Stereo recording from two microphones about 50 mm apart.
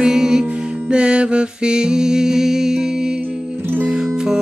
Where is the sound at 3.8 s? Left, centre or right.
Centre.